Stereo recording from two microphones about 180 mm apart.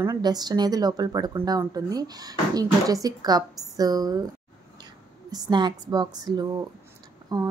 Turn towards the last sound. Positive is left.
turn(degrees=-20)  # may be behind; listen again after turning